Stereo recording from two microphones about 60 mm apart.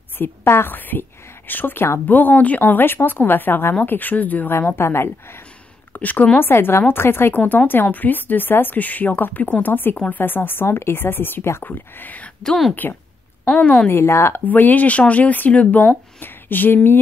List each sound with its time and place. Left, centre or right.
0.2 s speech: left
4.6 s a woman's voice: left
5.9 s a woman's voice: left
6.4 s speech: left
11.6 s speech: left
13.5 s a woman's voice: centre
13.8 s speech: left
14.5 s speech: left